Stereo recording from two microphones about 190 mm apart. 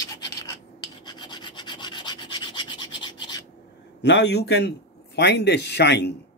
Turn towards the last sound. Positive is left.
turn(degrees=65)  # may be behind; listen again after turning